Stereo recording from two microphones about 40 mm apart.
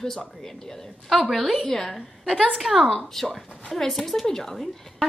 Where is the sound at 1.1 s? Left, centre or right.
Centre.